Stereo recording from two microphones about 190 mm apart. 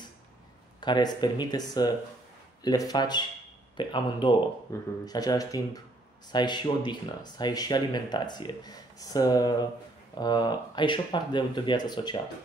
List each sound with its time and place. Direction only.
0.7 s speech: 20° left (ahead or behind)